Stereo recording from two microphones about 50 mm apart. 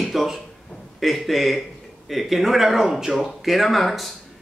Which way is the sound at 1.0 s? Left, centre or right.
Centre.